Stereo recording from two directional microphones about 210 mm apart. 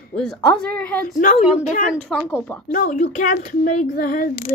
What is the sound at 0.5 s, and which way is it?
Speech, 5° left (ahead or behind).